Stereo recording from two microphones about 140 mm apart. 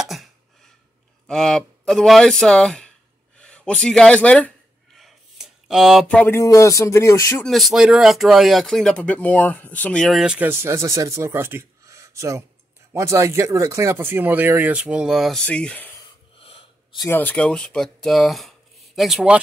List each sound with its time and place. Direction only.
0.0 s a sound: centre (ahead or behind)
1.2 s speech: 5° left (ahead or behind)
4.9 s a sound: centre (ahead or behind)
6.0 s music: 10° left (ahead or behind)
6.4 s speech: 20° left (ahead or behind)
7.4 s speech: centre (ahead or behind)
10.2 s speech: 10° right (ahead or behind); by 15.9 s 10° left (ahead or behind)
16.3 s wheeze: 45° left (ahead or behind)
17.0 s speech: 15° left (ahead or behind); by 19.4 s 5° right (ahead or behind)